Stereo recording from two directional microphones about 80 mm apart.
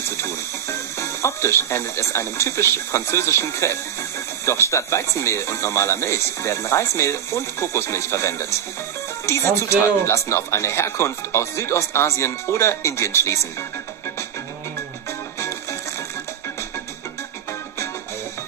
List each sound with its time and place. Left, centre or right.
0.2 s speech: left